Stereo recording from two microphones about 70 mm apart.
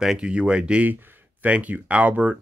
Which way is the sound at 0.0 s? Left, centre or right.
Centre.